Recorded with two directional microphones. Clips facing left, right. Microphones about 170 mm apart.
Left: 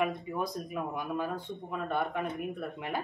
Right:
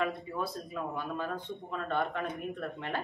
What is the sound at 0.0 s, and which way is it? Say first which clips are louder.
Speech: left 2 dB; 15° left (ahead or behind).